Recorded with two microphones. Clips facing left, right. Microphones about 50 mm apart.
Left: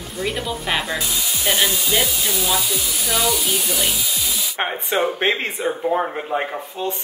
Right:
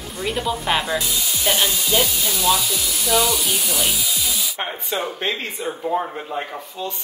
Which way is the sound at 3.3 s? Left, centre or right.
Centre.